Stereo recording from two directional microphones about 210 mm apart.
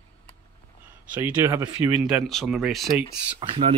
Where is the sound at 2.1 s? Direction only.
Centre (ahead or behind).